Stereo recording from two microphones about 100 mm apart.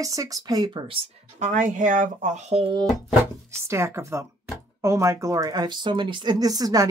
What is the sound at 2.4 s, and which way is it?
Speech, 80° right.